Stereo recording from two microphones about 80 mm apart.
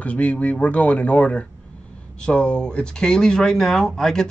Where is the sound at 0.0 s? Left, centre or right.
Centre.